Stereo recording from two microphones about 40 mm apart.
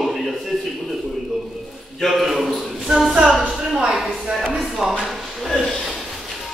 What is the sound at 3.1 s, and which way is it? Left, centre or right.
Speech, centre.